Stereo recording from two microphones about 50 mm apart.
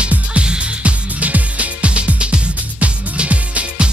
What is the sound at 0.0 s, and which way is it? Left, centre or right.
Music, right.